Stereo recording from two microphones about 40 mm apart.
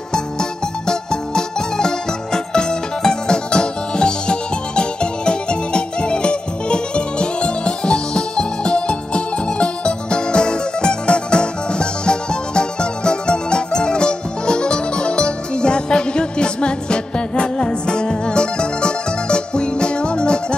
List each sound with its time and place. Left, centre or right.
0.1 s music: centre